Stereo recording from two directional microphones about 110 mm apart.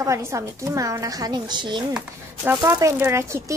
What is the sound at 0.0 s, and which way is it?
A woman's voice, 25° right (ahead or behind).